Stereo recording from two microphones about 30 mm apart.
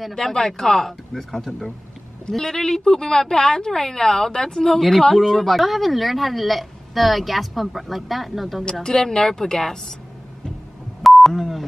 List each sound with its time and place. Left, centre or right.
0.1 s a woman's voice: centre
4.7 s a woman's voice: centre
8.8 s speech: centre
11.0 s beep: centre